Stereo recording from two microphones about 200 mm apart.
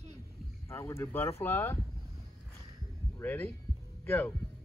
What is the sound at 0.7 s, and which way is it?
Speech, 15° left (ahead or behind).